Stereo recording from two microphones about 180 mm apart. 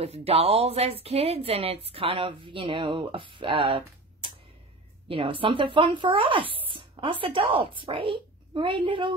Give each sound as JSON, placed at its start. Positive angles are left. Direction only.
{"t": 0.0, "sound": "speech", "side_deg": -35}